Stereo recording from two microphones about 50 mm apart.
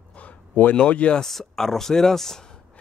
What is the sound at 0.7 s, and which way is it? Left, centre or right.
Speech, left.